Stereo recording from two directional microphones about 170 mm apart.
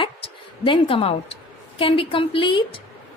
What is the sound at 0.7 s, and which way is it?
A woman's voice, 30° left (ahead or behind).